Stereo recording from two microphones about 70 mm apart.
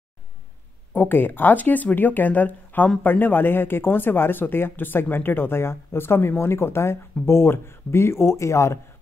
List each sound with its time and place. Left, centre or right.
0.9 s speech: left